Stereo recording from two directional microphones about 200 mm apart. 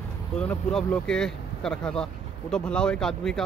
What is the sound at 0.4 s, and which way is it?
Speech, 5° left (ahead or behind).